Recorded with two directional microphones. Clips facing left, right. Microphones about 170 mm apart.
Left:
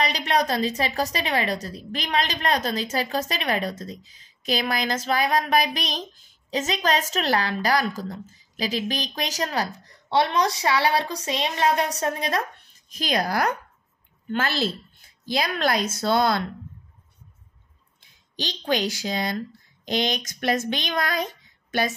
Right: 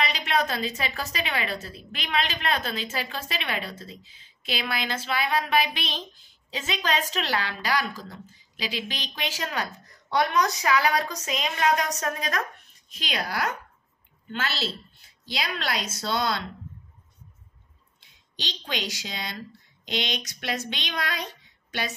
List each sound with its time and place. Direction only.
0.0 s a woman's voice: 40° left (ahead or behind)
12.9 s a woman's voice: 45° left (ahead or behind)
18.3 s a woman's voice: 45° left (ahead or behind)